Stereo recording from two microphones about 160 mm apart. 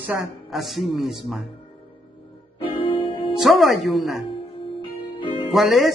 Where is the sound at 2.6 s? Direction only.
35° left (ahead or behind).